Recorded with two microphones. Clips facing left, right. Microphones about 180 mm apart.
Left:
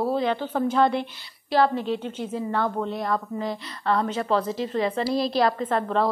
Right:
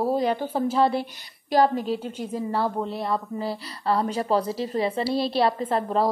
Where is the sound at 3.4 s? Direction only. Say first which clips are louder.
Even; 35° right (ahead or behind).